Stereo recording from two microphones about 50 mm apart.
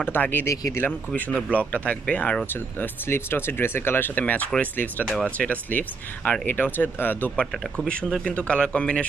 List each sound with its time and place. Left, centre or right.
0.1 s speech: left
2.5 s speech: left
7.7 s speech: left